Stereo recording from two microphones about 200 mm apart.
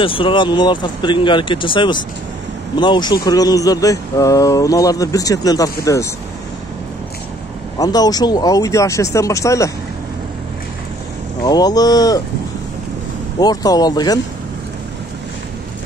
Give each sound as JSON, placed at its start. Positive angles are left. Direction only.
{"t": 0.0, "sound": "speech", "side_deg": 25}
{"t": 7.8, "sound": "speech", "side_deg": 20}
{"t": 11.4, "sound": "speech", "side_deg": 20}
{"t": 13.4, "sound": "speech", "side_deg": 20}